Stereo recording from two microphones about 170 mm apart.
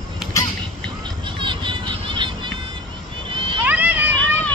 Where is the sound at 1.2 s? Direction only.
30° right (ahead or behind).